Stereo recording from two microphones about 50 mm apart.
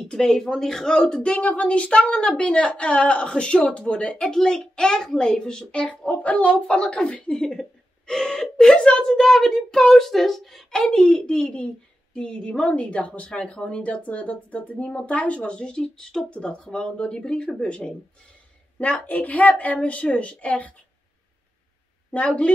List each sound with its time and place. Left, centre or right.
0.0 s speech: centre; by 4.2 s left
4.2 s a child's voice: centre
7.3 s a child's voice: centre
11.4 s a woman's voice: left
18.8 s speech: left
22.1 s speech: left